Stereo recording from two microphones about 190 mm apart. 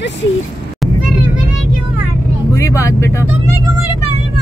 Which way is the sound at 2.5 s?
15° left (ahead or behind).